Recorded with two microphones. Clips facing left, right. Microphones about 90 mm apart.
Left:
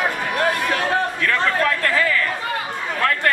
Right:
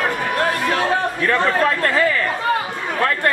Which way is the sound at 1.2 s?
30° right (ahead or behind).